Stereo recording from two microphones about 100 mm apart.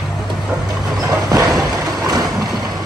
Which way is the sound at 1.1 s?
35° right (ahead or behind).